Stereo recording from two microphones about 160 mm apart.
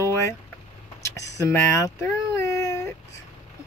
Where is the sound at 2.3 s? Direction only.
20° left (ahead or behind).